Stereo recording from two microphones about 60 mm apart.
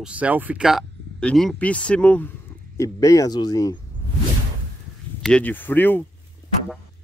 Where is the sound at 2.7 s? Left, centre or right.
Left.